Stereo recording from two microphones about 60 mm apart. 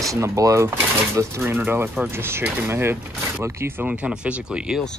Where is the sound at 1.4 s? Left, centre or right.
Right.